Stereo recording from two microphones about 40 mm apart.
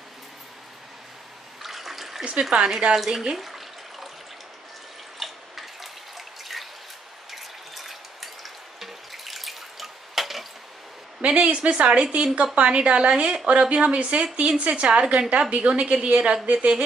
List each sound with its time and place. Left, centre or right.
1.6 s water: centre
2.5 s a woman's voice: right
3.0 s speech: centre
3.3 s a sound: centre
5.2 s drip: centre
7.2 s water: centre
8.7 s drip: centre
11.1 s a woman's voice: right